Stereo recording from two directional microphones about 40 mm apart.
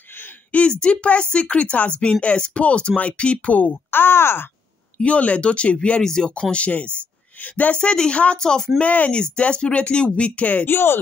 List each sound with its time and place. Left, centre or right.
0.5 s a woman's voice: left
3.9 s speech: left
4.9 s speech: left; by 6.3 s centre
6.5 s speech: left
7.7 s speech: left
8.7 s speech: left
9.1 s speech: left
10.7 s speech: left